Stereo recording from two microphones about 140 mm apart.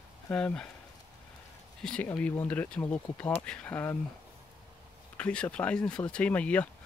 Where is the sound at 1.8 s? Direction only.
10° left (ahead or behind).